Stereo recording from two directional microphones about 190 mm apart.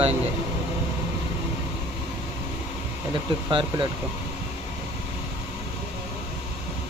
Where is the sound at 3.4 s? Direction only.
25° right (ahead or behind).